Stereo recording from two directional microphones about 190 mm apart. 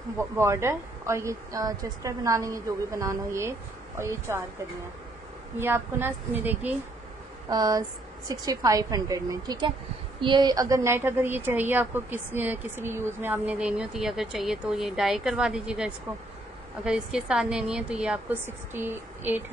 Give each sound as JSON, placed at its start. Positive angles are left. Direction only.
{"t": 0.2, "sound": "a woman's voice", "side_deg": -15}
{"t": 5.6, "sound": "a woman's voice", "side_deg": -10}
{"t": 7.4, "sound": "a woman's voice", "side_deg": -20}